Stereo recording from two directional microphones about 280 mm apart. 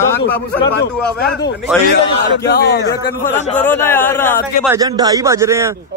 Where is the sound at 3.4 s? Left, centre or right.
Left.